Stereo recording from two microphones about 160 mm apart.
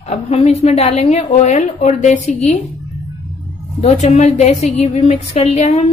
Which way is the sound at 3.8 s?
40° left (ahead or behind).